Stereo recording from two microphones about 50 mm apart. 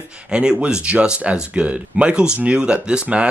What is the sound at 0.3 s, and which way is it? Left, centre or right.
Speech, centre.